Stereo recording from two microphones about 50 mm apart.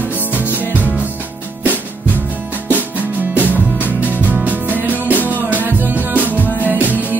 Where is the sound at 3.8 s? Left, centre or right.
Right.